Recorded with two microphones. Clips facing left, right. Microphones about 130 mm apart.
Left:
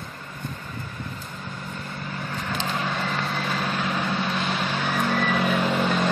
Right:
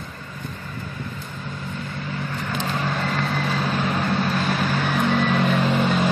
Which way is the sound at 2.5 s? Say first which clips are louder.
Right 2 dB; centre (ahead or behind).